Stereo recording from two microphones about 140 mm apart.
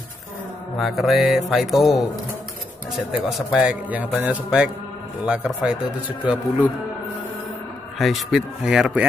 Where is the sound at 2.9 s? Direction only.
Centre (ahead or behind).